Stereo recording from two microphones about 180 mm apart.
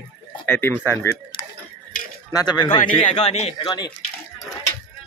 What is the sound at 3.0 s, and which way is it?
Speech, 35° left (ahead or behind).